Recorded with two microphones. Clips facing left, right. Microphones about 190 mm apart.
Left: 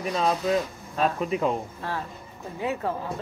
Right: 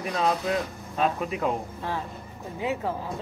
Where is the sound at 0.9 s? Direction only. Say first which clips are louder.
Left 2 dB; 5° right (ahead or behind).